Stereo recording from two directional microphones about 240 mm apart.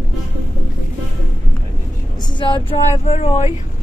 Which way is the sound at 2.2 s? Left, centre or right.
Centre.